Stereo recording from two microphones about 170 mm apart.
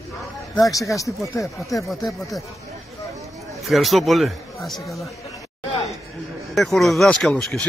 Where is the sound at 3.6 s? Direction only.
Centre (ahead or behind).